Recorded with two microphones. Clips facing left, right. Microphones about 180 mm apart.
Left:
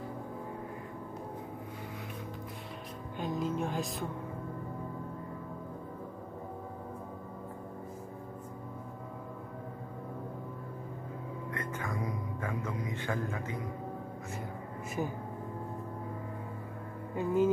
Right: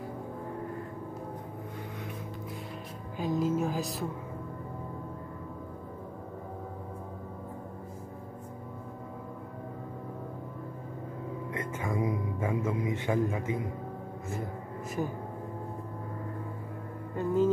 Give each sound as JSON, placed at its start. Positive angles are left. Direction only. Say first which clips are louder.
{"t": 3.2, "sound": "speech", "louder": "right 5 dB", "side_deg": 0}
{"t": 11.5, "sound": "music", "louder": "right 5 dB", "side_deg": -25}
{"t": 17.1, "sound": "speech", "louder": "right 1 dB", "side_deg": 10}